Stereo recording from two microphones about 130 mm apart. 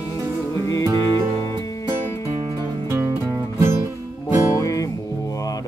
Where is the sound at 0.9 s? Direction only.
35° right (ahead or behind).